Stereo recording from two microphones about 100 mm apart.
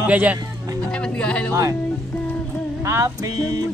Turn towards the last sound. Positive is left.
turn(degrees=-30)  # may be behind; listen again after turning